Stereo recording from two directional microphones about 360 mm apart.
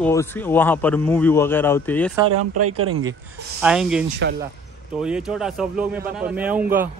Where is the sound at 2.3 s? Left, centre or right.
Right.